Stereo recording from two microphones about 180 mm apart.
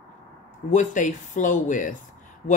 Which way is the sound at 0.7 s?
45° left (ahead or behind).